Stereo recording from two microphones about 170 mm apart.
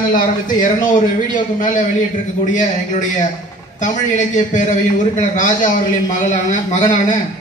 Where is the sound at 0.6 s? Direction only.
50° left (ahead or behind).